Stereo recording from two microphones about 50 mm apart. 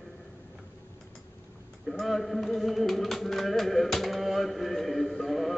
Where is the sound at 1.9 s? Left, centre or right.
Centre.